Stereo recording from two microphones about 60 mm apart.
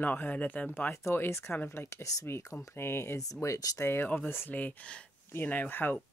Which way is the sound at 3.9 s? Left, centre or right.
Left.